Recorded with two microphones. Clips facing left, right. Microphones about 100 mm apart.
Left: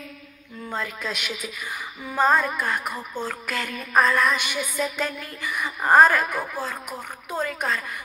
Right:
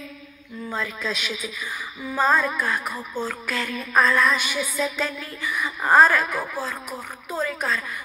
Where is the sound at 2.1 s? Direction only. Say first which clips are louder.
Even; 15° left (ahead or behind).